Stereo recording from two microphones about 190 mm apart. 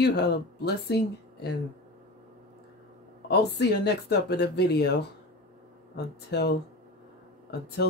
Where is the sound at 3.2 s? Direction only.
60° left (ahead or behind).